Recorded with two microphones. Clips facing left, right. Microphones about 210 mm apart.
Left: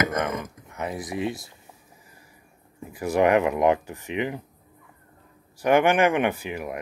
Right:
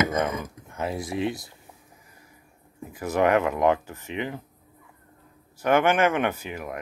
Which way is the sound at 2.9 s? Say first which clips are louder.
Left 2 dB; 10° left (ahead or behind).